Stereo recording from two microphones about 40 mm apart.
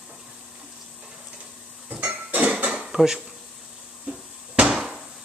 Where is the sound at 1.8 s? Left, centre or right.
Right.